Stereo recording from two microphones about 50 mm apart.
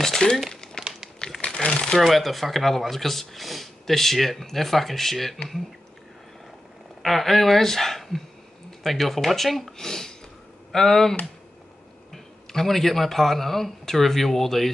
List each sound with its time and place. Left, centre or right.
0.2 s speech: centre
0.8 s crumpling: centre
2.0 s speech: centre
7.0 s speech: centre